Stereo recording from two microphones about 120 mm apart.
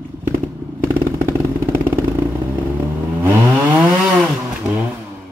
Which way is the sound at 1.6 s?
25° right (ahead or behind).